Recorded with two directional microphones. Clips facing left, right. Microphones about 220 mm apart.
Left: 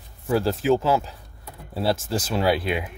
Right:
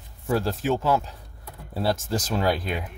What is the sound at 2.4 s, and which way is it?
Speech, 5° left (ahead or behind).